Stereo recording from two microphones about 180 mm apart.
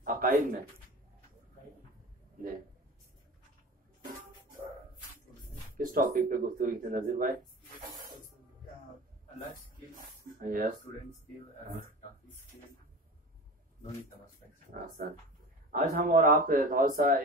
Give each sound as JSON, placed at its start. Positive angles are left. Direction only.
{"t": 0.0, "sound": "a sound", "side_deg": -50}
{"t": 5.8, "sound": "speech", "side_deg": -50}
{"t": 9.9, "sound": "snake", "side_deg": -50}
{"t": 14.7, "sound": "speech", "side_deg": -45}